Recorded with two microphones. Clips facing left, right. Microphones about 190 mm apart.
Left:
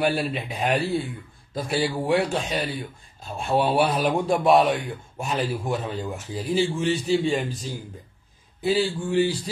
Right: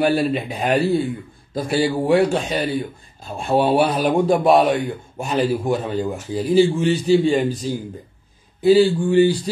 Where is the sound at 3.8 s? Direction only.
Centre (ahead or behind).